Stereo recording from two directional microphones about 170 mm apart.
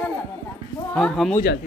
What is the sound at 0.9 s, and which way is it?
Speech, 5° left (ahead or behind).